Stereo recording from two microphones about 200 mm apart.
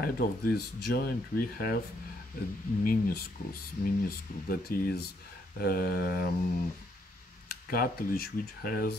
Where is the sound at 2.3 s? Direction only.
45° left (ahead or behind).